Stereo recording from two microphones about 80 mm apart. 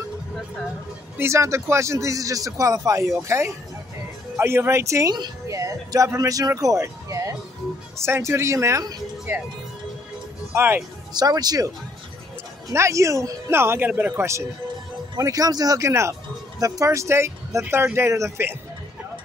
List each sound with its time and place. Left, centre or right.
1.1 s speech: right
10.5 s speech: right
11.1 s speech: right
12.7 s speech: right
13.5 s speech: right
15.1 s speech: right